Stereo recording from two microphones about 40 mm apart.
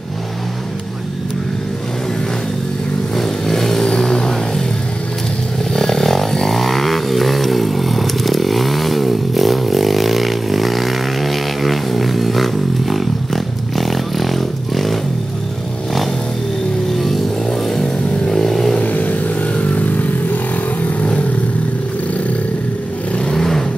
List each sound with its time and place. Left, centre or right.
3.2 s vehicle: centre
5.7 s vehicle: centre
12.9 s a sound: centre
16.9 s vehicle: centre
18.8 s vehicle: left
23.3 s vehicle: centre